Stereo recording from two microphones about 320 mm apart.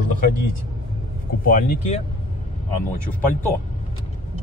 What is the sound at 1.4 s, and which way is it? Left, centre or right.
Speech, left.